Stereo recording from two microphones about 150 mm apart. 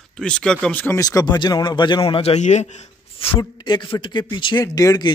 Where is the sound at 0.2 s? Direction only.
5° left (ahead or behind).